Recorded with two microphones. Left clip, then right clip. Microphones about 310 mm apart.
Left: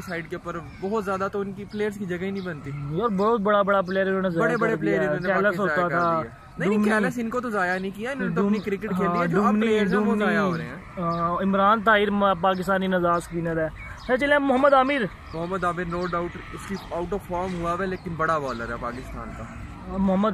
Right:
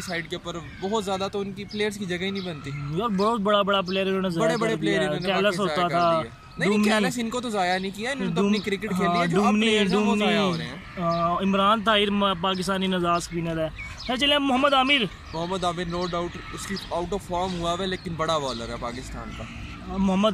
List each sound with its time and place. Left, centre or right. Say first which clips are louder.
0.1 s speech: even; centre
3.0 s speech: left 2 dB; centre